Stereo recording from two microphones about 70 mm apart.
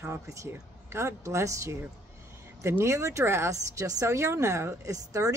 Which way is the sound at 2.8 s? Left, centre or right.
Right.